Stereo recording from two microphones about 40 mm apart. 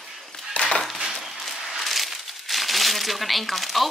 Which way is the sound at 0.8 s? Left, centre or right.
Centre.